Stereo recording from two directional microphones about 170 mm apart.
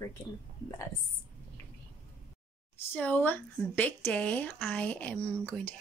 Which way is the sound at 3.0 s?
10° left (ahead or behind).